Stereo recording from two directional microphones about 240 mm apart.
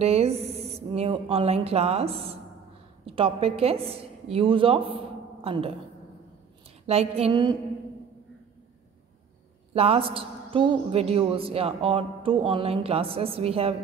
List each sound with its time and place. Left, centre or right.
0.0 s a man's voice: right
6.9 s a man's voice: right
9.8 s a man's voice: right